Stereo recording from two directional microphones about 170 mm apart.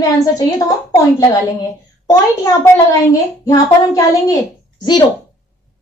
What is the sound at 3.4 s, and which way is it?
A child's voice, 20° left (ahead or behind).